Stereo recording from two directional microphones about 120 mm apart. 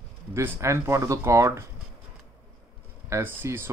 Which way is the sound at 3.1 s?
20° right (ahead or behind).